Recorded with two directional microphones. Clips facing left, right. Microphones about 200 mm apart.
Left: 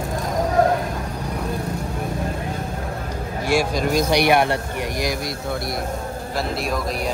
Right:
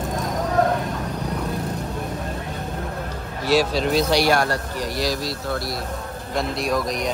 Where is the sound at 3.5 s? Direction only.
15° left (ahead or behind).